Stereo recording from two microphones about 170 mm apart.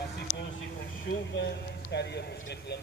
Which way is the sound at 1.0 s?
90° left.